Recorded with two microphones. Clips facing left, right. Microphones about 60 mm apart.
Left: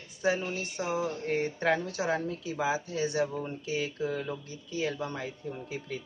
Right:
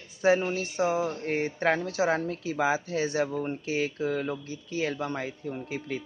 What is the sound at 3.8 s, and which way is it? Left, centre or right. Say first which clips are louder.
A man's voice: right 4 dB; right.